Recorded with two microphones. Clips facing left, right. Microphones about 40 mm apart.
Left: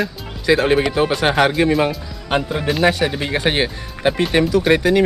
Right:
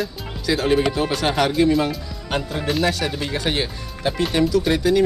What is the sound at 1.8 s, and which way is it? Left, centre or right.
Speech, left.